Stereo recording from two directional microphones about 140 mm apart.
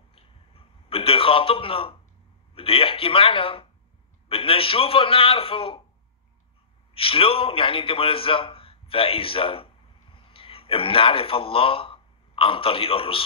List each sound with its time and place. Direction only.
0.1 s a sound: 40° left (ahead or behind)
2.5 s a man's voice: 40° left (ahead or behind)
6.9 s a man's voice: 40° left (ahead or behind)